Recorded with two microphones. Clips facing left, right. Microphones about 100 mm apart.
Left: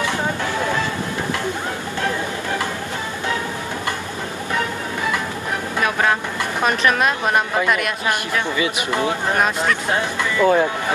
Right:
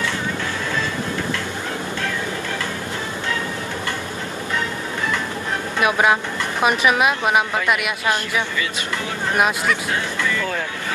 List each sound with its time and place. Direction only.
5.9 s a woman's voice: 15° right (ahead or behind)
8.5 s speech: 20° left (ahead or behind)
10.4 s speech: 30° left (ahead or behind)